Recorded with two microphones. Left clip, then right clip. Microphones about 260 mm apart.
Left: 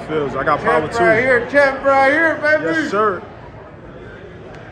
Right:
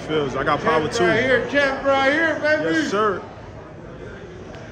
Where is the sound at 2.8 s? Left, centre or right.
Centre.